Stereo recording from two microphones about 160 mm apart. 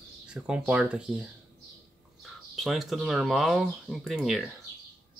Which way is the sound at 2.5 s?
Centre (ahead or behind).